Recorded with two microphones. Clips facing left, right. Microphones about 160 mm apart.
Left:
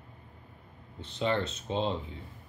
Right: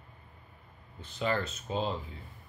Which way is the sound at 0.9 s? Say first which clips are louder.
Left 2 dB; 30° left (ahead or behind).